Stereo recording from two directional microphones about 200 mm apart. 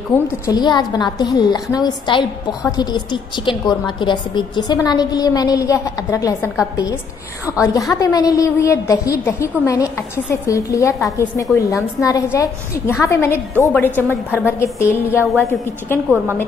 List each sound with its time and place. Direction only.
0.5 s a woman's voice: 20° left (ahead or behind)
15.2 s a woman's voice: centre (ahead or behind)
15.9 s a woman's voice: 10° left (ahead or behind)